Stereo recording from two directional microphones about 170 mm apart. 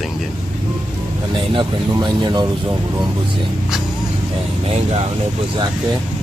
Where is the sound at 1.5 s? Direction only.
25° right (ahead or behind).